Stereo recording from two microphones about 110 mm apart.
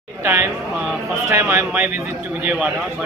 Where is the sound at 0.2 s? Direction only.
25° right (ahead or behind).